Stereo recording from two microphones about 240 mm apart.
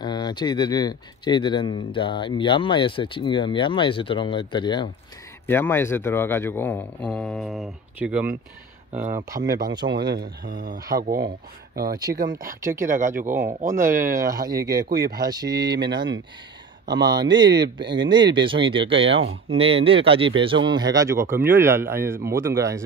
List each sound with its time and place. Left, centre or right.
0.0 s speech: centre
9.9 s speech: right
12.6 s speech: centre